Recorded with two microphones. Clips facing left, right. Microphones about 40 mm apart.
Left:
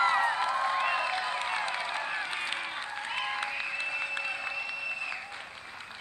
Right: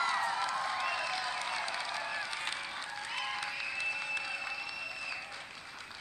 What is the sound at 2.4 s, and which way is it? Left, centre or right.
Applause, left.